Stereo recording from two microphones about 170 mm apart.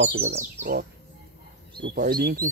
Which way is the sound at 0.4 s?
50° right (ahead or behind).